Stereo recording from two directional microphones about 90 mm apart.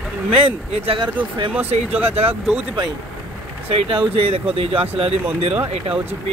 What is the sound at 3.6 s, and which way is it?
Speech, 80° right.